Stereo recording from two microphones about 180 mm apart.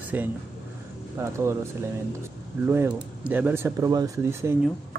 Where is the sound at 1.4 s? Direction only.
15° right (ahead or behind).